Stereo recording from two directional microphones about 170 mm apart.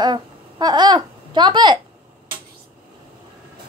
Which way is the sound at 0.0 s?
25° right (ahead or behind).